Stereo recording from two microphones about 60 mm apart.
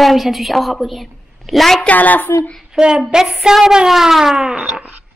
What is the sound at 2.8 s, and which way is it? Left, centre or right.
Speech, centre.